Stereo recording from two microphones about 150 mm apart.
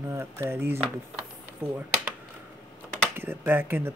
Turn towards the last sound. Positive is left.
turn(degrees=-15)  # may be behind; listen again after turning